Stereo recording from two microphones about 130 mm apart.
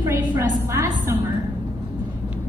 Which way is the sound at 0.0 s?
15° right (ahead or behind).